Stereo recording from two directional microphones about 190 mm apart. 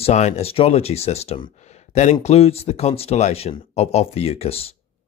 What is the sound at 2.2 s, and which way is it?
Speech, 30° left (ahead or behind).